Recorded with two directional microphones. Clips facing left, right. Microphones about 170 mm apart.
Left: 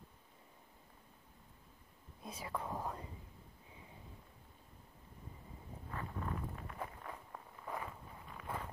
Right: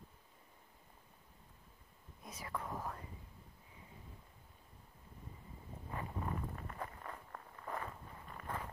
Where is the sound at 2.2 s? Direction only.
25° left (ahead or behind).